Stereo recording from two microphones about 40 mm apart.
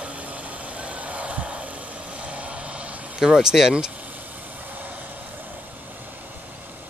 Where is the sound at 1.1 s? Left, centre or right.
Right.